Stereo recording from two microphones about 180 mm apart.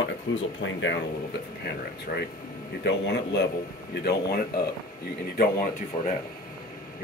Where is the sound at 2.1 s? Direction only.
55° left (ahead or behind).